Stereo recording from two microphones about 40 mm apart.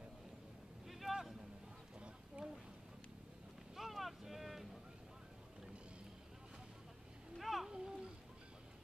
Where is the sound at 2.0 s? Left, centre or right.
Right.